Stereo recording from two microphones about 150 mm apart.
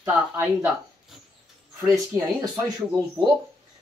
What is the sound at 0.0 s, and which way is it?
Speech, 15° right (ahead or behind).